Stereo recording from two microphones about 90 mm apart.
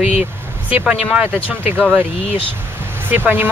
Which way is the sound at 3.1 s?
20° right (ahead or behind).